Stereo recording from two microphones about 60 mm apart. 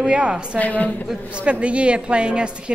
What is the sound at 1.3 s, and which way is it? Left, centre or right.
A woman's voice, centre.